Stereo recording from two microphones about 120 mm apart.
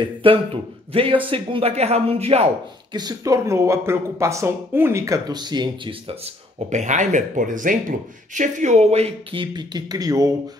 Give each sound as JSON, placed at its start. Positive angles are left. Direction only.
{"t": 0.0, "sound": "speech", "side_deg": -45}
{"t": 2.9, "sound": "speech", "side_deg": -35}
{"t": 6.7, "sound": "speech", "side_deg": -90}
{"t": 9.3, "sound": "speech", "side_deg": -40}